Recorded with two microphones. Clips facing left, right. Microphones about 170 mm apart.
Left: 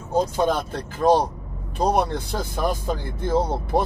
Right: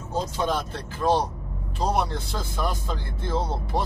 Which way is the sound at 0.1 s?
50° left (ahead or behind).